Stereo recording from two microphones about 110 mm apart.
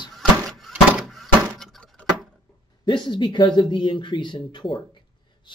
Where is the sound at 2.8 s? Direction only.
45° left (ahead or behind).